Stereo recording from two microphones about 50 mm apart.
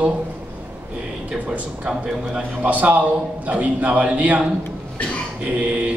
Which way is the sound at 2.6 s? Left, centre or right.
Right.